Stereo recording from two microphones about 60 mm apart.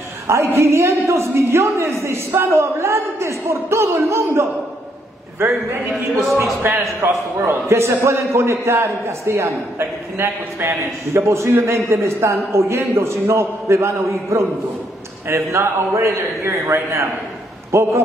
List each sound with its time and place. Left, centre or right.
0.6 s a man's voice: right
6.6 s a man's voice: right